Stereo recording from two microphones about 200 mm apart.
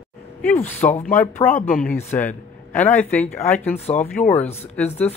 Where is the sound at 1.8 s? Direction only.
10° left (ahead or behind).